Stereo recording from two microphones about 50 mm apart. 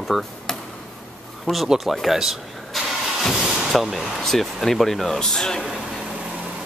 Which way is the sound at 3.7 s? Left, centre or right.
Centre.